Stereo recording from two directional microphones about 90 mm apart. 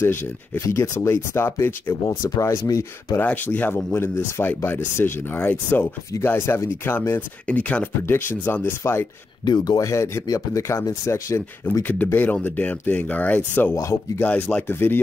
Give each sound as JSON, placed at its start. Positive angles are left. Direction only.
{"t": 0.7, "sound": "speech", "side_deg": 30}
{"t": 2.2, "sound": "speech", "side_deg": 40}
{"t": 3.2, "sound": "speech", "side_deg": 20}
{"t": 7.4, "sound": "speech", "side_deg": 15}
{"t": 9.4, "sound": "speech", "side_deg": 50}
{"t": 11.9, "sound": "speech", "side_deg": 20}